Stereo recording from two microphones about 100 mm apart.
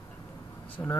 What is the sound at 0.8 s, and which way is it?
Speech, 30° left (ahead or behind).